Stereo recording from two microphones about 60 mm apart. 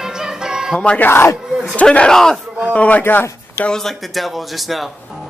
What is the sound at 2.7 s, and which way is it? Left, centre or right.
Speech, left.